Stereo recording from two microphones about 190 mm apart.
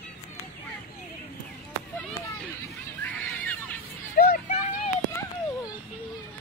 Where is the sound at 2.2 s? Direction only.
15° left (ahead or behind).